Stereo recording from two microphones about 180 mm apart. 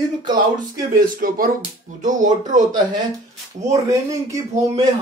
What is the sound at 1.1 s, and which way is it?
Speech, 50° right (ahead or behind).